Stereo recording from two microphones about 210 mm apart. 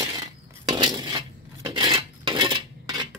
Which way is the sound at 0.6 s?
20° right (ahead or behind).